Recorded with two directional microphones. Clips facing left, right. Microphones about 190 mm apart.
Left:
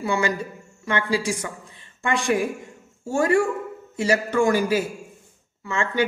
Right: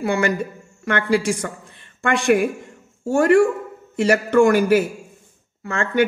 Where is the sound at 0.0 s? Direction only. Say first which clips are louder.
Right 3 dB; 60° right (ahead or behind).